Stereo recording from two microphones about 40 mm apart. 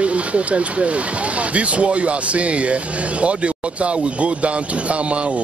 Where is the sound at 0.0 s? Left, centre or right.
Right.